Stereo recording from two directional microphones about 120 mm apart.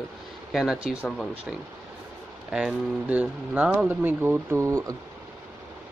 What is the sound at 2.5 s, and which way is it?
Speech, 10° right (ahead or behind).